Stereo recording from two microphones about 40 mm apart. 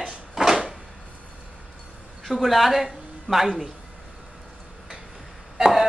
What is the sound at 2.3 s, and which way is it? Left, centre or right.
Speech, centre.